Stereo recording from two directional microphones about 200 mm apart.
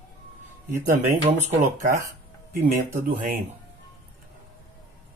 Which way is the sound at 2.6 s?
45° right (ahead or behind).